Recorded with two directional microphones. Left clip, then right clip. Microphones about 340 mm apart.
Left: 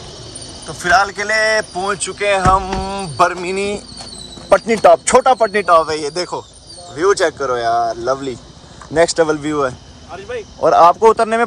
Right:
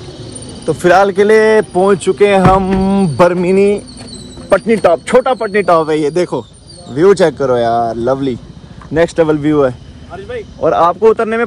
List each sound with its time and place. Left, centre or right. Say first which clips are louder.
0.7 s speech: right 5 dB; centre
9.2 s speech: right 5 dB; right
10.9 s speech: right 1 dB; left